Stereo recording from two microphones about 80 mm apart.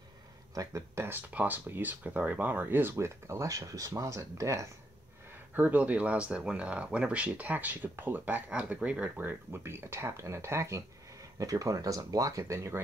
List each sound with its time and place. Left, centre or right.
0.6 s speech: right
1.3 s speech: right
5.5 s speech: right